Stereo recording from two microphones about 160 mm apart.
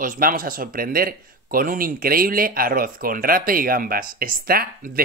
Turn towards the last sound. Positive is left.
turn(degrees=-65)  # may be behind; listen again after turning